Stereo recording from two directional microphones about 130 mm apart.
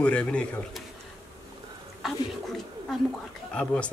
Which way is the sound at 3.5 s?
5° left (ahead or behind).